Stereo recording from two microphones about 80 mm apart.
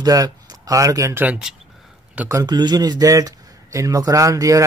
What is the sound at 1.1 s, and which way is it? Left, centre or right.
Speech, centre.